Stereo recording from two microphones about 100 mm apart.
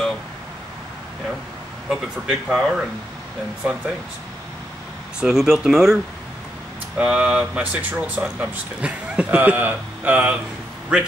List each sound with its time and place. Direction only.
1.9 s speech: 5° right (ahead or behind)
5.2 s speech: 5° right (ahead or behind)
7.0 s speech: 10° right (ahead or behind)